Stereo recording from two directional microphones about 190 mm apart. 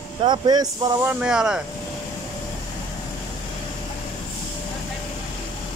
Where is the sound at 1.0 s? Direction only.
5° right (ahead or behind).